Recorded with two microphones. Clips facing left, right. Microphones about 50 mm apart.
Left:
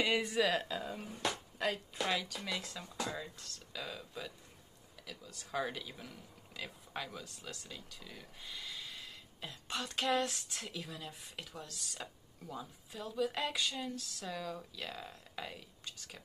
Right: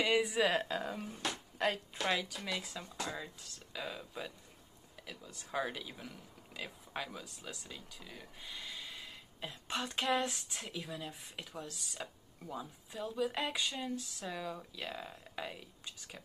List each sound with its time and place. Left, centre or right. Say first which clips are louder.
0.0 s speech: right 2 dB; centre
0.4 s a woman's voice: right 1 dB; right
0.7 s speech: right 2 dB; right
0.9 s speech: left 1 dB; centre
2.0 s speech: right 2 dB; centre